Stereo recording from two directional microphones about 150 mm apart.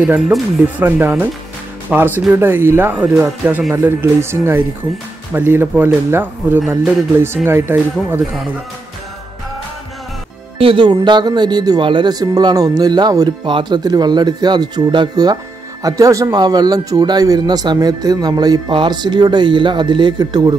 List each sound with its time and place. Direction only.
0.6 s speech: 15° right (ahead or behind)
10.6 s speech: 35° right (ahead or behind)